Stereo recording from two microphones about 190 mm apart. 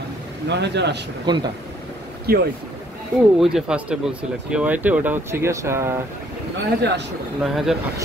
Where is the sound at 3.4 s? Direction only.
5° right (ahead or behind).